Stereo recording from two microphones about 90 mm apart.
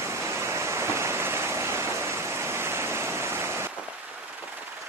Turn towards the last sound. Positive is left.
turn(degrees=-30)  # may be behind; listen again after turning